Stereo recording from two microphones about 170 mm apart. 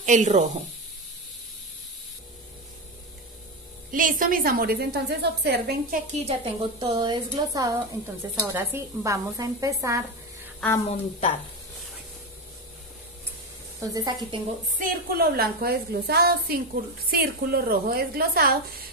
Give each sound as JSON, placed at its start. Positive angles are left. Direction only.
{"t": 0.0, "sound": "speech", "side_deg": -45}
{"t": 3.9, "sound": "a woman's voice", "side_deg": -55}
{"t": 6.2, "sound": "a woman's voice", "side_deg": -35}
{"t": 10.9, "sound": "a woman's voice", "side_deg": 40}
{"t": 13.7, "sound": "a woman's voice", "side_deg": -20}
{"t": 14.8, "sound": "a woman's voice", "side_deg": -60}